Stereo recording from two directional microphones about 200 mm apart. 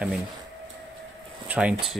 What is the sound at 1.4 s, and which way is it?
Speech, 5° right (ahead or behind).